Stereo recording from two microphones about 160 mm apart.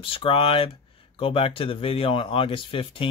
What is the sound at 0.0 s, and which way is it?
Speech, 35° left (ahead or behind).